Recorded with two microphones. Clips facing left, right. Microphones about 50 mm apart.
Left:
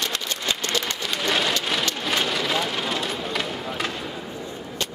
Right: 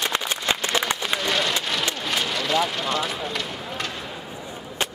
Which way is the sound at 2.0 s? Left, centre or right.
Centre.